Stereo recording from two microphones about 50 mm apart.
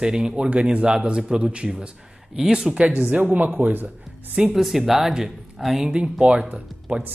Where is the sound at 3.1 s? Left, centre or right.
Right.